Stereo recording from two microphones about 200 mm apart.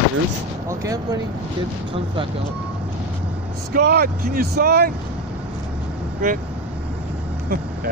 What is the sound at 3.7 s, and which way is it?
Speech, 50° right (ahead or behind).